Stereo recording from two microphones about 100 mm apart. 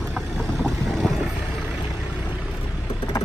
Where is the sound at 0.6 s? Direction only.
Centre (ahead or behind).